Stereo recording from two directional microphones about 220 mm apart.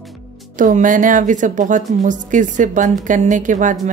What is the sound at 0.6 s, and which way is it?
Speech, 35° right (ahead or behind).